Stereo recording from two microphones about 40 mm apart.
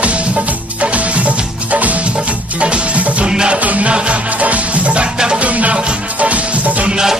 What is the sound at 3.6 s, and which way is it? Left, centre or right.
Music, right.